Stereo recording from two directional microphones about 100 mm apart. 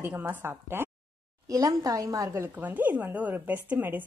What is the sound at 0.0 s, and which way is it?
Speech, 20° right (ahead or behind).